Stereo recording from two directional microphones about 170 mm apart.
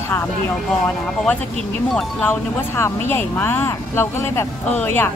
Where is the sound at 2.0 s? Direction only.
10° left (ahead or behind).